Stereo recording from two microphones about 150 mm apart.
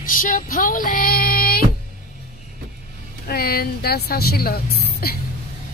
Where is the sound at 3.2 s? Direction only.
90° left.